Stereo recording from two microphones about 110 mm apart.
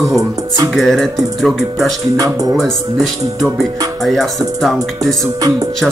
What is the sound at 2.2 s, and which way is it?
Speech, 30° right (ahead or behind).